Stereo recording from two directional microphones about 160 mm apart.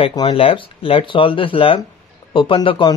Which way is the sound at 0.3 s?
35° left (ahead or behind).